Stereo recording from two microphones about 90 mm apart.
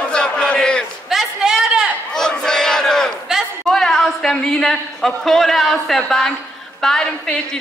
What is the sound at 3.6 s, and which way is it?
A woman's voice, 5° left (ahead or behind).